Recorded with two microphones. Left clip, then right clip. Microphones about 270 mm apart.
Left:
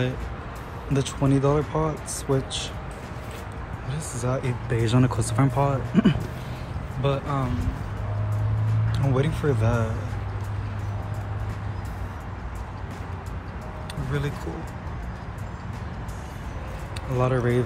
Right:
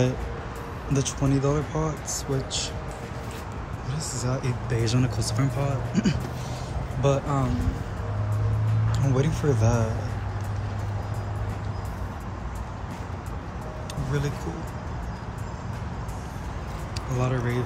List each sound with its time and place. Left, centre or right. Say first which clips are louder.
0.9 s speech: left 2 dB; centre
2.0 s speech: left 3 dB; right
4.3 s speech: left 4 dB; centre
7.0 s speech: right 2 dB; centre
8.9 s speech: left 1 dB; centre
17.1 s speech: left 5 dB; centre